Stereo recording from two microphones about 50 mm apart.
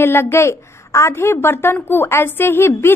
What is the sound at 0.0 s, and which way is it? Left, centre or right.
A woman's voice, left.